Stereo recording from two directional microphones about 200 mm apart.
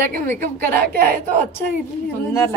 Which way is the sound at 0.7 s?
45° right (ahead or behind).